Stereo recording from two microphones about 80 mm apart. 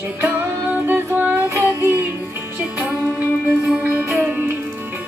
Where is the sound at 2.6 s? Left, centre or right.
Right.